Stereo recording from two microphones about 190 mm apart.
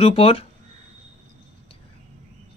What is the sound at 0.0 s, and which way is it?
Speech, 30° left (ahead or behind).